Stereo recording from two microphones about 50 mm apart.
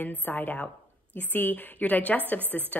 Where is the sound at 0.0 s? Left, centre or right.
Left.